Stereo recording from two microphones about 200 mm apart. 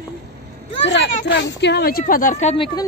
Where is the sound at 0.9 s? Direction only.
60° left (ahead or behind).